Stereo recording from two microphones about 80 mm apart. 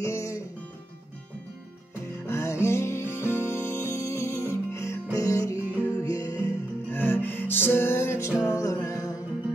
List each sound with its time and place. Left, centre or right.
0.0 s music: left
2.2 s music: left
6.9 s music: left
8.5 s music: left